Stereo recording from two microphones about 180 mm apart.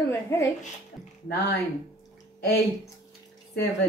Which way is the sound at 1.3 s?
65° left (ahead or behind).